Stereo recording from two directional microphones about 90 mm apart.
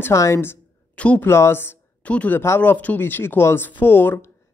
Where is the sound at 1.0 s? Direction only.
15° left (ahead or behind).